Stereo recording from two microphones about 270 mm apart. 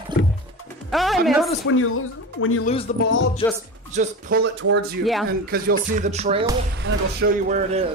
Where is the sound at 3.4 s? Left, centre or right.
Centre.